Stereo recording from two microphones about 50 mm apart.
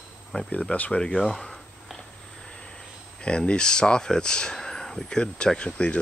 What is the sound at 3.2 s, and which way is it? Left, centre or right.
Speech, centre.